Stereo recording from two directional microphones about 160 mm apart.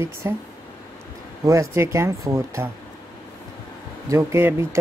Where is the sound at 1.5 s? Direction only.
20° right (ahead or behind).